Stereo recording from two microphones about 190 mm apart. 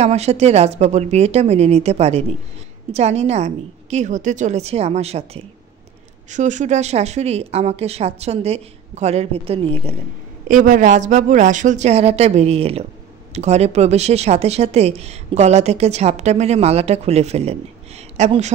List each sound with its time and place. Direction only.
0.0 s speech: 35° right (ahead or behind)
10.5 s speech: 45° right (ahead or behind)